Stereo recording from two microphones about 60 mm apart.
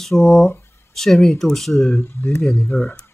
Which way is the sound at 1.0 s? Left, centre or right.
Centre.